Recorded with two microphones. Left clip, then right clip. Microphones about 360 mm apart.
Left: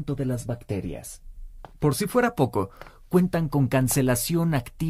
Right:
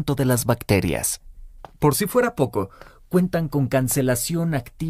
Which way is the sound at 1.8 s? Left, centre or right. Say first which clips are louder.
Right 4 dB; centre.